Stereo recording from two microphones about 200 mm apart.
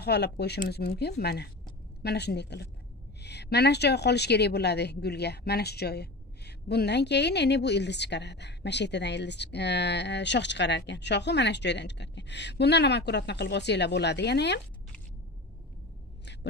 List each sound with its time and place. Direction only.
0.0 s a woman's voice: 55° left (ahead or behind)